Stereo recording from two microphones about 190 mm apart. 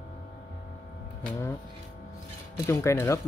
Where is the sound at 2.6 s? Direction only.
15° left (ahead or behind).